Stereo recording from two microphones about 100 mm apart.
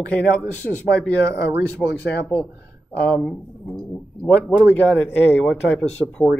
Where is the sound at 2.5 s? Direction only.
25° right (ahead or behind).